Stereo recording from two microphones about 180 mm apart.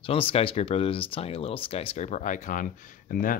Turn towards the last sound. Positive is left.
turn(degrees=50)  # may be behind; listen again after turning